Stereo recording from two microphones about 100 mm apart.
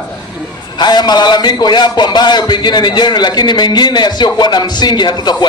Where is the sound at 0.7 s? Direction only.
45° left (ahead or behind).